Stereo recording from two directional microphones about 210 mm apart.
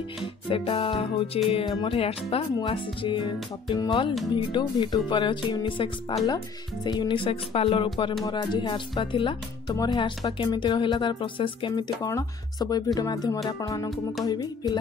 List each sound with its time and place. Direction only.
0.2 s speech: 25° left (ahead or behind)